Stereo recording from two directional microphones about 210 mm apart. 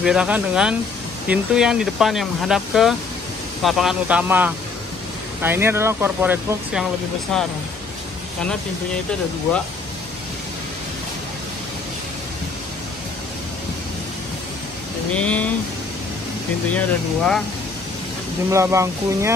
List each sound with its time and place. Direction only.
0.0 s speech: 5° right (ahead or behind)
15.1 s speech: 5° left (ahead or behind)
16.7 s speech: 5° left (ahead or behind)
18.5 s speech: 15° right (ahead or behind)